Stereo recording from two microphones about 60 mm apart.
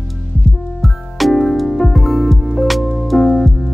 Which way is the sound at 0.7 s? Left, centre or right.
Centre.